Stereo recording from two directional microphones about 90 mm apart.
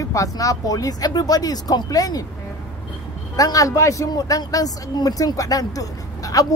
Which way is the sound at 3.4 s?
40° left (ahead or behind).